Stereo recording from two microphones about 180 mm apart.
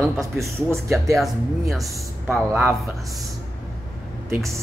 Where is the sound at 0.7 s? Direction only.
Centre (ahead or behind).